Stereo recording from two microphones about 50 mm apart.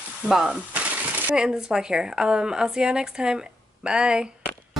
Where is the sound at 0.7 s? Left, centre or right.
Right.